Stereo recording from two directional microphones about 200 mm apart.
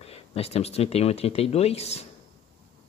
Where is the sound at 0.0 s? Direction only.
30° left (ahead or behind).